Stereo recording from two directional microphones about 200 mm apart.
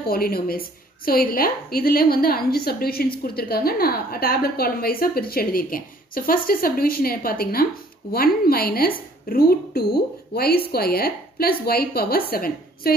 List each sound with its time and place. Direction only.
0.0 s a woman's voice: 50° left (ahead or behind)